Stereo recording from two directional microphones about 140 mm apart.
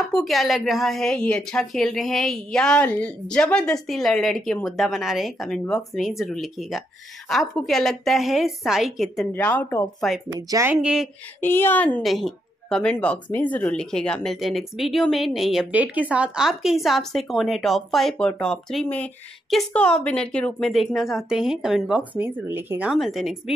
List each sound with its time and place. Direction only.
0.1 s a woman's voice: centre (ahead or behind)
9.3 s speech: 10° left (ahead or behind)
9.9 s a woman's voice: centre (ahead or behind)
10.5 s speech: 20° right (ahead or behind)
10.8 s speech: 5° right (ahead or behind)
11.4 s speech: 15° left (ahead or behind)
12.0 s a woman's voice: centre (ahead or behind)
15.7 s a woman's voice: 10° right (ahead or behind)